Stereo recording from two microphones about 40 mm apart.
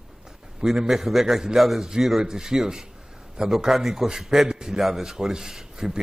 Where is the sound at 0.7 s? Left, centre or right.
Centre.